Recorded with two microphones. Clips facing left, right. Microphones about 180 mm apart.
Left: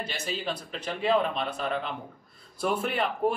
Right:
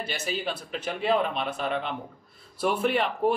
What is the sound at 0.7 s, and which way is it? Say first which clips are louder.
A man's voice: even; 5° right (ahead or behind).